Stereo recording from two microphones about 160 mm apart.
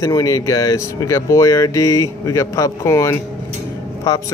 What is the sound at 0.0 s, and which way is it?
Speech, 20° left (ahead or behind).